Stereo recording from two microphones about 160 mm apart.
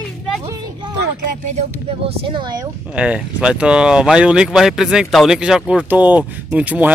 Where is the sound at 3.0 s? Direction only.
5° right (ahead or behind).